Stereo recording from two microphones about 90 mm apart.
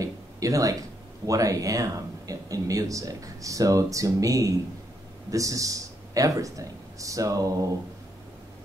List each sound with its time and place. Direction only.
0.0 s speech: 40° right (ahead or behind)